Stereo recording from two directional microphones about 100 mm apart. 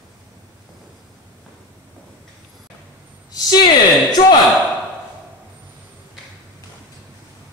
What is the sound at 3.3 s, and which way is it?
Speech, 45° left (ahead or behind).